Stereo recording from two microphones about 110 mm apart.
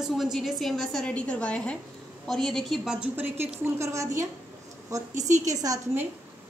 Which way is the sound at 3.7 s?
25° right (ahead or behind).